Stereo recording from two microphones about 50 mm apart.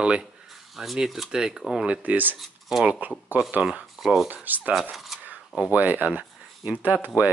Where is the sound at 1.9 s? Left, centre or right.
Right.